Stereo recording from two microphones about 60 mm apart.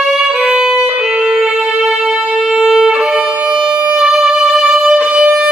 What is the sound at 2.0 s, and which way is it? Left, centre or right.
Violin, centre.